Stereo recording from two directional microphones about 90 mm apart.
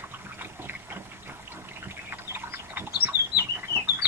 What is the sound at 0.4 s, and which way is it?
Boat, 25° right (ahead or behind).